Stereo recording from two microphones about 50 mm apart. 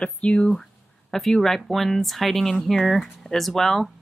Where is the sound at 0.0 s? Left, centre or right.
Left.